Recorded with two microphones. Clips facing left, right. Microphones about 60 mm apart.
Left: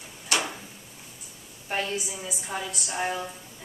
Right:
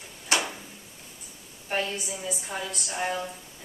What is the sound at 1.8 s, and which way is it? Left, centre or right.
A woman's voice, centre.